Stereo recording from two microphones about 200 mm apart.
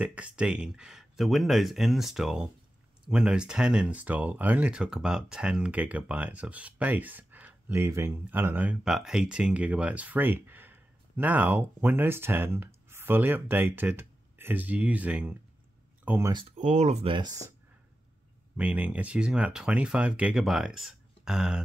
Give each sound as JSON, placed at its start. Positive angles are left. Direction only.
{"t": 0.0, "sound": "speech", "side_deg": -5}
{"t": 16.5, "sound": "speech", "side_deg": -35}
{"t": 18.6, "sound": "speech", "side_deg": -5}